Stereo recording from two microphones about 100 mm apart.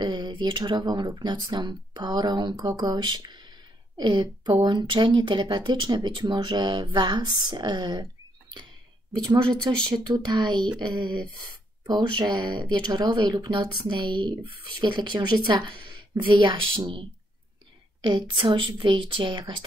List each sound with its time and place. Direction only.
0.0 s speech: 50° right (ahead or behind)
18.0 s a woman's voice: 55° right (ahead or behind)